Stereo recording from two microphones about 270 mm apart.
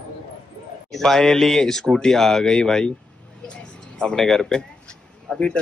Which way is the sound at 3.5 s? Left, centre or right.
Centre.